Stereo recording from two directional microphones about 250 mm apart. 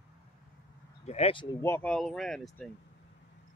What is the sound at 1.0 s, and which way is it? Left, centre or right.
Speech, left.